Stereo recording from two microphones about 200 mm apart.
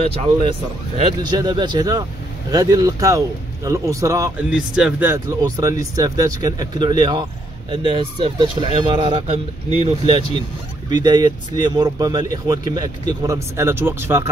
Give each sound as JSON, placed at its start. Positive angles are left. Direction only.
{"t": 0.0, "sound": "speech", "side_deg": -30}
{"t": 4.5, "sound": "speech", "side_deg": -5}